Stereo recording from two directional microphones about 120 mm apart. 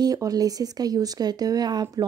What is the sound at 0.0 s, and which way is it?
Speech, 30° right (ahead or behind).